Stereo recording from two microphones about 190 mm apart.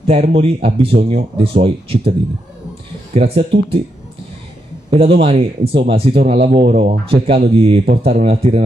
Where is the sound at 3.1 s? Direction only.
30° right (ahead or behind).